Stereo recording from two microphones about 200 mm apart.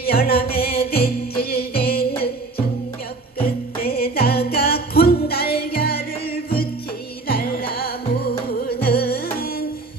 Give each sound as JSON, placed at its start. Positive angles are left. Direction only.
{"t": 0.0, "sound": "music", "side_deg": 50}
{"t": 3.4, "sound": "music", "side_deg": 50}
{"t": 7.2, "sound": "music", "side_deg": 45}